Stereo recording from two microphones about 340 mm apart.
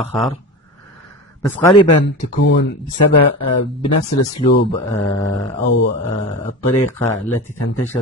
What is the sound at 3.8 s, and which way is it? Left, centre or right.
Speech, left.